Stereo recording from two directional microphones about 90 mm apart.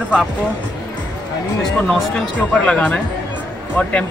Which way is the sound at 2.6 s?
15° left (ahead or behind).